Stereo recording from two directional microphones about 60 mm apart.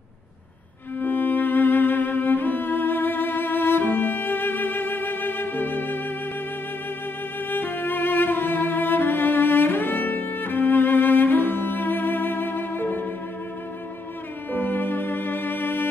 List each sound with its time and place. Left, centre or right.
0.9 s music: left
7.4 s music: left
14.5 s music: left